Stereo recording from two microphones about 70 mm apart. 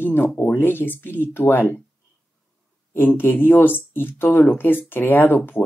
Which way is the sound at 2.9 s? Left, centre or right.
Left.